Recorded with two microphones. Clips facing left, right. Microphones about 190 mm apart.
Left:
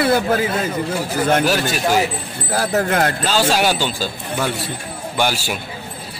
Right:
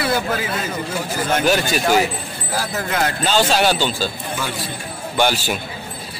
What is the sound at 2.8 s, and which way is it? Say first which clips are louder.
Speech: left 3 dB; 50° left (ahead or behind).